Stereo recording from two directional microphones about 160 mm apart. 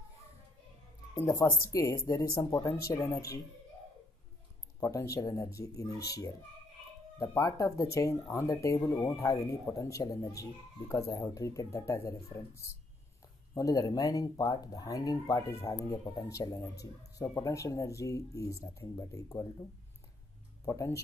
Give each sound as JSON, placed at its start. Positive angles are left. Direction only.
{"t": 1.2, "sound": "speech", "side_deg": 20}
{"t": 4.7, "sound": "speech", "side_deg": 20}
{"t": 20.6, "sound": "speech", "side_deg": 20}